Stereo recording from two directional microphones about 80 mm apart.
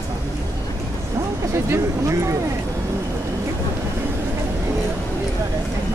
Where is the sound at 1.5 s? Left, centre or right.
Right.